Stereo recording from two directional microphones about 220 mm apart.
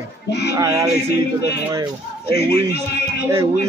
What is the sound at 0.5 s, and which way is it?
Speech, 15° right (ahead or behind).